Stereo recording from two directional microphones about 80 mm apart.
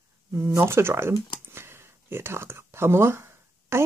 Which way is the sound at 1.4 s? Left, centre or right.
Right.